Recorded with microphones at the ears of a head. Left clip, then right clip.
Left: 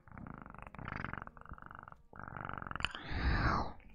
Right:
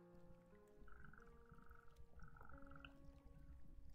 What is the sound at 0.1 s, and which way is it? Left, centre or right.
Frog, left.